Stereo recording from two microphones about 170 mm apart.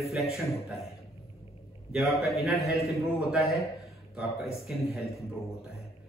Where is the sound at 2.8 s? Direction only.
15° left (ahead or behind).